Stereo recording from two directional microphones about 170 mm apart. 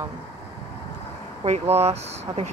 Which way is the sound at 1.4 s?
40° right (ahead or behind).